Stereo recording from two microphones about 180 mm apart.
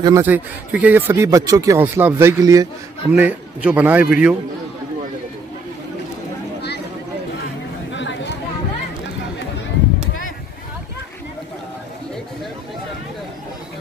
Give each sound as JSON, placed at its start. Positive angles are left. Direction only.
{"t": 0.0, "sound": "speech", "side_deg": -15}
{"t": 3.1, "sound": "speech", "side_deg": -10}
{"t": 7.9, "sound": "a sound", "side_deg": 90}